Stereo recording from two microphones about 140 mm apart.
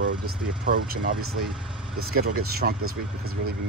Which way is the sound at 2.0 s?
90° right.